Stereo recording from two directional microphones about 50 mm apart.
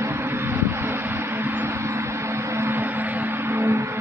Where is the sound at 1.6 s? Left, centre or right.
Right.